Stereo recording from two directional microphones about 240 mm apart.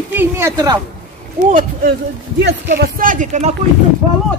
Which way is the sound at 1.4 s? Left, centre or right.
Right.